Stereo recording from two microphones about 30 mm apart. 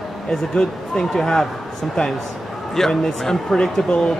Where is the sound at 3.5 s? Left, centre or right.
Centre.